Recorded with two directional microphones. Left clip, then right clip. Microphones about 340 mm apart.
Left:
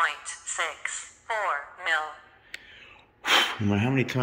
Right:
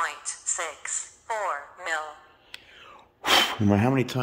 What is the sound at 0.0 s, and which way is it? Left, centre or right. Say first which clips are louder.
Music: left 3 dB; centre.